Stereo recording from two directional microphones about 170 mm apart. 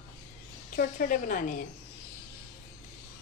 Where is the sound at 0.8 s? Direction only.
55° left (ahead or behind).